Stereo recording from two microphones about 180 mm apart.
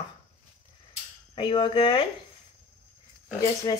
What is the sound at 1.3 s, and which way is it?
Speech, 25° left (ahead or behind).